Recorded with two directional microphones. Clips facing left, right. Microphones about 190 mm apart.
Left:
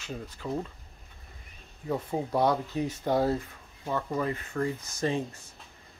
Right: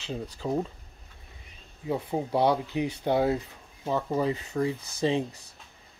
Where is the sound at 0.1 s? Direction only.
25° right (ahead or behind).